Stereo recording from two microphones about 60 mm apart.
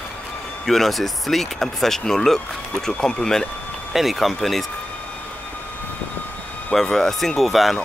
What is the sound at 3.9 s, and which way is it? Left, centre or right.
Speech, centre.